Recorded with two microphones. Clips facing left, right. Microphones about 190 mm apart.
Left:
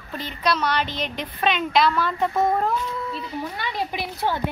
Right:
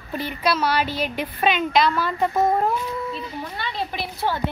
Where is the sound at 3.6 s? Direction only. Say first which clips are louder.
Right 2 dB; 15° left (ahead or behind).